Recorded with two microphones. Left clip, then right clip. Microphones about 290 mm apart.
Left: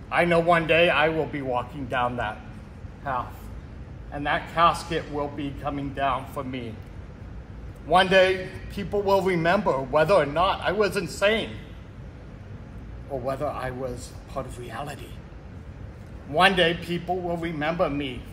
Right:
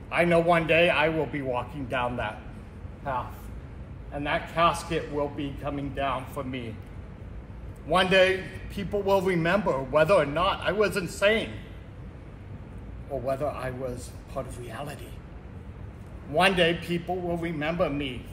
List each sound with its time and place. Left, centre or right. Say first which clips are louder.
0.1 s a man's voice: left 2 dB; centre
7.9 s a man's voice: left 3 dB; centre
13.2 s a man's voice: left 1 dB; centre
16.3 s a man's voice: left 2 dB; centre